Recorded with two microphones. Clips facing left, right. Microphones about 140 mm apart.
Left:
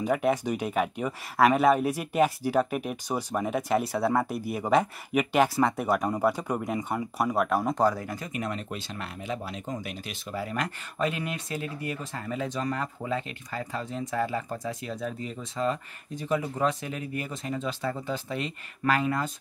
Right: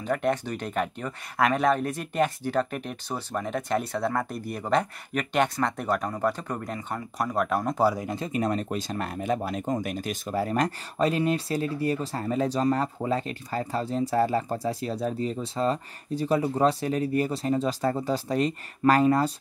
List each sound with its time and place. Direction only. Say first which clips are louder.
0.0 s speech: left 1 dB; 5° left (ahead or behind); by 8.1 s 10° right (ahead or behind)
8.1 s speech: right 6 dB; 30° right (ahead or behind)